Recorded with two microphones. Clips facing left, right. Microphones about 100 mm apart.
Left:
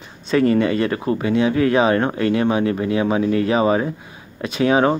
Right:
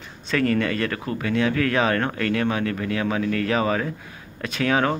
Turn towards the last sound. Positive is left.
turn(degrees=20)  # may be behind; listen again after turning